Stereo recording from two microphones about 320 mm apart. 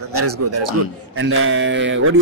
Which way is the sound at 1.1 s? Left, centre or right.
Right.